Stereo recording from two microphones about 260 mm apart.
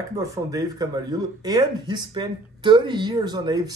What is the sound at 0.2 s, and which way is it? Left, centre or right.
Speech, centre.